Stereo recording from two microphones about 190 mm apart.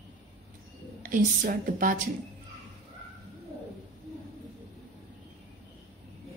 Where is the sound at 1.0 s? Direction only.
45° right (ahead or behind).